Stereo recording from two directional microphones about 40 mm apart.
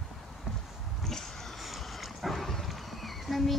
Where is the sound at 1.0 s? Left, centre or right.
Centre.